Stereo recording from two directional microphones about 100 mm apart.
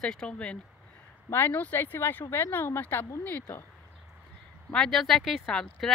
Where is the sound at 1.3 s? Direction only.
20° left (ahead or behind).